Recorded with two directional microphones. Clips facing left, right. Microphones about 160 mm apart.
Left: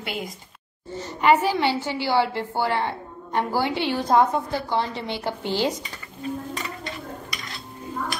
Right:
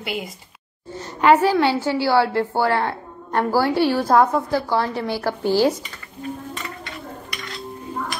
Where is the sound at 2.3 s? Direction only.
55° right (ahead or behind).